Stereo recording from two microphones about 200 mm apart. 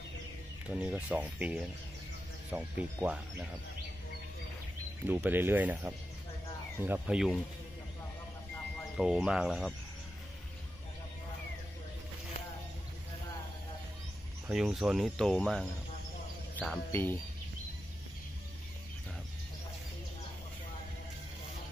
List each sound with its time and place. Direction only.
0.7 s speech: 5° right (ahead or behind)
5.0 s speech: 10° right (ahead or behind)
8.9 s speech: 5° right (ahead or behind)
14.5 s speech: centre (ahead or behind)